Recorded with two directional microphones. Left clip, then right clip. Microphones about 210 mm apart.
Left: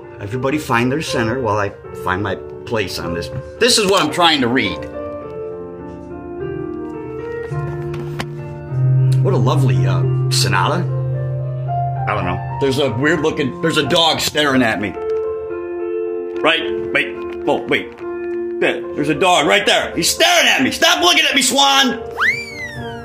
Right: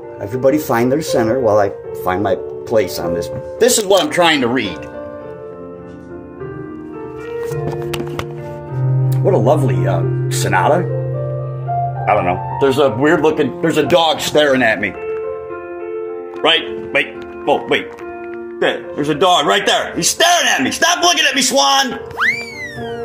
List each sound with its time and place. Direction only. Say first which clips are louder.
0.3 s speech: right 4 dB; 10° left (ahead or behind)
9.3 s speech: right 6 dB; 25° left (ahead or behind)
12.0 s speech: right 6 dB; 20° left (ahead or behind)
13.9 s speech: right 3 dB; 35° left (ahead or behind)
14.4 s speech: right 3 dB; 20° left (ahead or behind)
16.4 s a man's voice: right 2 dB; 10° left (ahead or behind)